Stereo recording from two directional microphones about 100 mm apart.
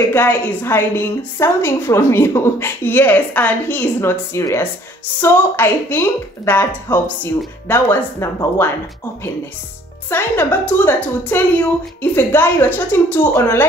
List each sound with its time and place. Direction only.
0.1 s a woman's voice: 20° left (ahead or behind)
10.0 s a woman's voice: 20° left (ahead or behind)